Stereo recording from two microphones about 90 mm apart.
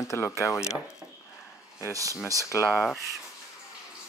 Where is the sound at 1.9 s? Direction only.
40° right (ahead or behind).